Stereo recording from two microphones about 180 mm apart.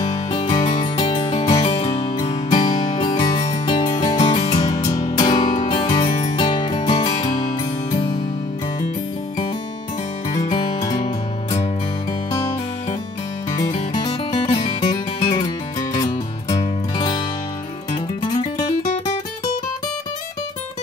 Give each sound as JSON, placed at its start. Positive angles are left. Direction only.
{"t": 0.0, "sound": "music", "side_deg": 30}
{"t": 3.1, "sound": "music", "side_deg": 20}
{"t": 3.4, "sound": "music", "side_deg": 35}
{"t": 4.6, "sound": "music", "side_deg": 20}
{"t": 10.4, "sound": "music", "side_deg": 30}
{"t": 12.3, "sound": "music", "side_deg": 15}
{"t": 13.7, "sound": "music", "side_deg": 30}